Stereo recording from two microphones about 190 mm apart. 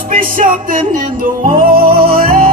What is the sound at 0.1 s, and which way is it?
Music, 45° right (ahead or behind).